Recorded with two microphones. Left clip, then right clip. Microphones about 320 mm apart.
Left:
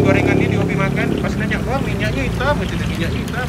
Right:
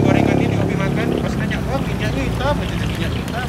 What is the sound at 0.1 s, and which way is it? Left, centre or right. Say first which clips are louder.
Vehicle: left 1 dB; centre.